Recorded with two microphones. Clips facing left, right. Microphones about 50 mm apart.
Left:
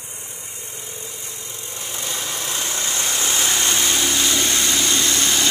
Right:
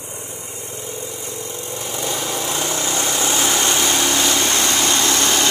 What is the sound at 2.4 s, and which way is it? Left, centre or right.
Vehicle, right.